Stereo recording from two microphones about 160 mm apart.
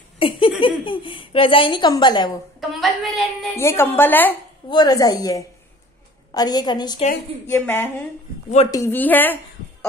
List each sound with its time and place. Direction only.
0.2 s speech: 35° left (ahead or behind)
2.6 s a woman's voice: centre (ahead or behind)
3.5 s a woman's voice: 15° left (ahead or behind)
4.6 s a woman's voice: 25° left (ahead or behind)
7.4 s a woman's voice: 15° left (ahead or behind)